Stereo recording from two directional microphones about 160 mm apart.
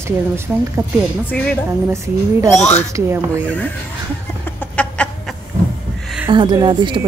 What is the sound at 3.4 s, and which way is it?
Speech, 10° left (ahead or behind).